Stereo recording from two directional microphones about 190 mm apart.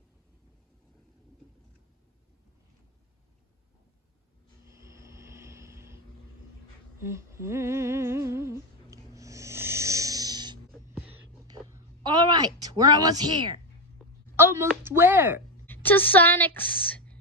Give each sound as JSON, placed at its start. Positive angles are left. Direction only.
{"t": 4.6, "sound": "vehicle", "side_deg": -15}
{"t": 7.0, "sound": "humming", "side_deg": -15}
{"t": 11.0, "sound": "whispering", "side_deg": -10}
{"t": 11.4, "sound": "a sound", "side_deg": -20}
{"t": 14.3, "sound": "speech", "side_deg": -15}
{"t": 15.6, "sound": "a sound", "side_deg": 10}